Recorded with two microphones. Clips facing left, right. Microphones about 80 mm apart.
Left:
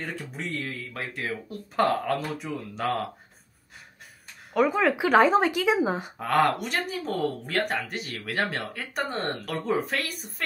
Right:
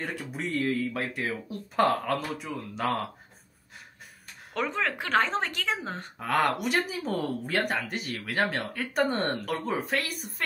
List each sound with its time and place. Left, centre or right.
0.0 s speech: centre
4.6 s a woman's voice: centre